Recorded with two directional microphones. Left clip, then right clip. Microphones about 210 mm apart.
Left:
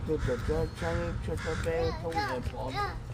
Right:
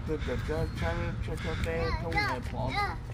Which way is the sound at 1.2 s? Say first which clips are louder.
Left 2 dB; 5° left (ahead or behind).